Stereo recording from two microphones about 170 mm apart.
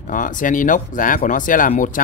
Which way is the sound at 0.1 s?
50° left (ahead or behind).